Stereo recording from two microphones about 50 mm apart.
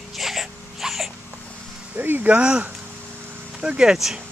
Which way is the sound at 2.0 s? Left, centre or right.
Right.